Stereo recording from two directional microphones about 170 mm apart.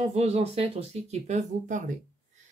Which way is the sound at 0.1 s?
40° right (ahead or behind).